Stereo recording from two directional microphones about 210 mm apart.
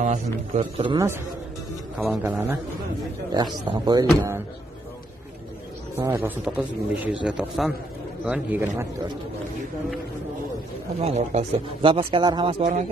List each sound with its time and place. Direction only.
0.0 s a man's voice: 35° right (ahead or behind)
0.9 s a man's voice: 10° right (ahead or behind)
3.3 s speech: 20° right (ahead or behind)
5.9 s a man's voice: 15° right (ahead or behind)
11.0 s speech: 30° right (ahead or behind)